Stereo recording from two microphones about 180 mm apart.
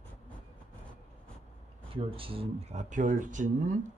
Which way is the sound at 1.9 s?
30° right (ahead or behind).